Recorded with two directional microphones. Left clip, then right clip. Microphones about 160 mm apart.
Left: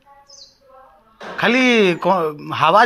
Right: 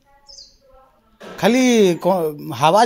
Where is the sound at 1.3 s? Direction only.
45° right (ahead or behind).